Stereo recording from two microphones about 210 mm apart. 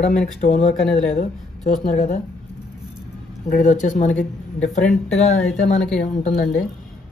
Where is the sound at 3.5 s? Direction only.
40° left (ahead or behind).